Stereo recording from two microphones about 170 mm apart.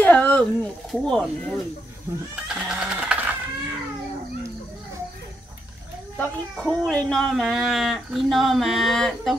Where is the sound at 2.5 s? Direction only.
5° right (ahead or behind).